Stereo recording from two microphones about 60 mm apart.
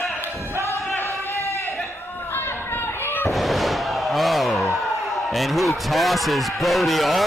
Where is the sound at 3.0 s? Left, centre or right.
Left.